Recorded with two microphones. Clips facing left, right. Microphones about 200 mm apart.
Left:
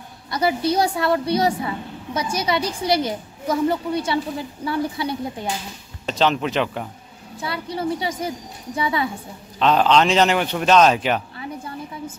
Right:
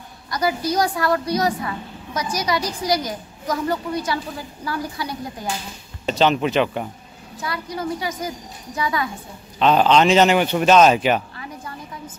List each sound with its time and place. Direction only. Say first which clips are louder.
0.3 s a woman's voice: left 2 dB; 25° left (ahead or behind)
6.0 s a man's voice: right 2 dB; centre (ahead or behind)
7.3 s a woman's voice: left 1 dB; 30° left (ahead or behind)
9.6 s a man's voice: right 1 dB; 5° right (ahead or behind)